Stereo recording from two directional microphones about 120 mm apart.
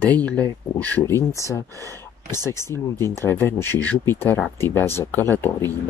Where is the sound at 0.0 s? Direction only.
15° left (ahead or behind).